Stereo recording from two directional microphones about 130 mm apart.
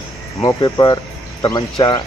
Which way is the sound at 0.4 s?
30° left (ahead or behind).